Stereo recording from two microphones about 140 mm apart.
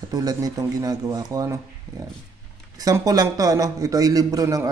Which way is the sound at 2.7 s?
25° right (ahead or behind).